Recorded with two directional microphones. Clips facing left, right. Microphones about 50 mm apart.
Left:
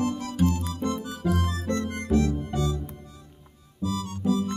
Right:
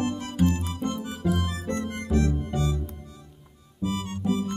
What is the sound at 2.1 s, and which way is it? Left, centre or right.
Music, right.